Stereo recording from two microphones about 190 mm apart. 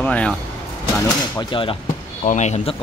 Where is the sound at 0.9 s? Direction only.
20° left (ahead or behind).